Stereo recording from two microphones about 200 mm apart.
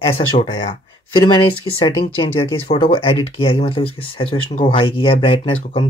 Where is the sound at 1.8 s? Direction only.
25° left (ahead or behind).